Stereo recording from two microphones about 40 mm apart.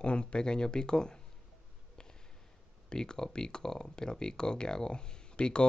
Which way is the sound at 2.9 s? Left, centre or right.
Centre.